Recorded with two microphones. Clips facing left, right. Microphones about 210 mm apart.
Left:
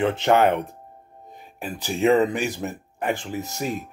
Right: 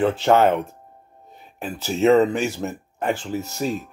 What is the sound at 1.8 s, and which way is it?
Speech, 15° left (ahead or behind).